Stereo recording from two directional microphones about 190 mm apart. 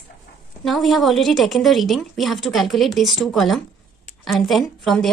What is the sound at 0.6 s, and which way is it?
A woman's voice, centre (ahead or behind).